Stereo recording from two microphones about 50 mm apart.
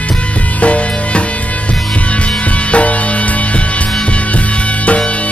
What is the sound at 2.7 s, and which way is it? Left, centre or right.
Music, left.